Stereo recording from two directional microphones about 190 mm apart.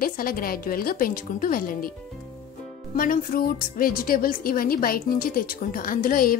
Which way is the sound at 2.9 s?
50° left (ahead or behind).